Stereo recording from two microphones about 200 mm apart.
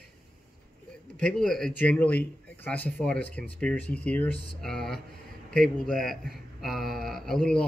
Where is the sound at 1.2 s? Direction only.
Centre (ahead or behind).